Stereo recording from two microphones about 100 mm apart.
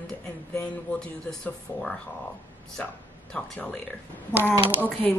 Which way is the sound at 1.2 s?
5° left (ahead or behind).